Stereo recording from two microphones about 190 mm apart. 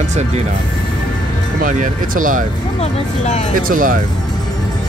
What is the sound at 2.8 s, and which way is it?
Speech, 40° left (ahead or behind).